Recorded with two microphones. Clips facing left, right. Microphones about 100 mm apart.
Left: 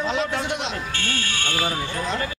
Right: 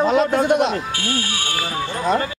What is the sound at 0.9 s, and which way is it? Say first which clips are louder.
Speech: right 4 dB; 10° right (ahead or behind).